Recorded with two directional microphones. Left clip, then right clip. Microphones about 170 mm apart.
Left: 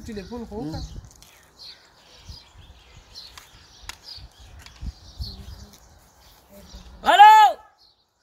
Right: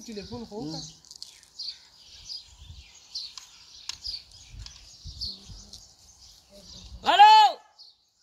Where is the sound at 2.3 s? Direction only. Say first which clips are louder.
Right 8 dB; 90° left.